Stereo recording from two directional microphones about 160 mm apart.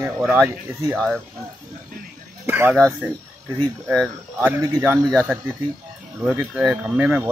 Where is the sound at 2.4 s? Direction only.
10° right (ahead or behind).